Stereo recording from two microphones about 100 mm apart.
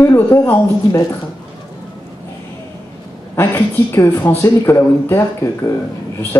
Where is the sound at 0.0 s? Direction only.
25° left (ahead or behind).